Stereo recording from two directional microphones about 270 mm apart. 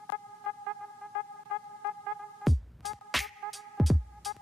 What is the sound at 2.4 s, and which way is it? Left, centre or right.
Music, centre.